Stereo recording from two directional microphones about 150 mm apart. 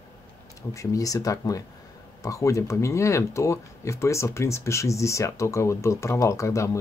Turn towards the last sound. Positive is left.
turn(degrees=20)  # may be behind; listen again after turning